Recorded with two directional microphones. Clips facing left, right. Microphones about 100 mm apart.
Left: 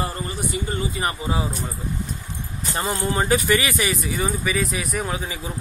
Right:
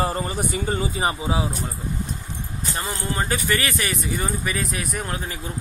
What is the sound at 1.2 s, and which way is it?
Speech, 5° right (ahead or behind).